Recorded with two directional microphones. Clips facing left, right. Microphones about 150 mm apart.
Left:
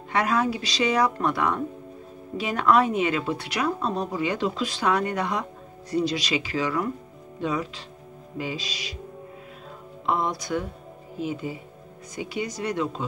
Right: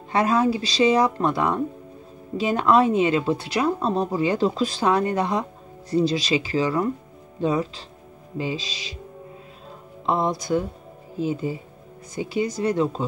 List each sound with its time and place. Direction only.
0.1 s speech: 30° right (ahead or behind)
10.0 s speech: 30° right (ahead or behind)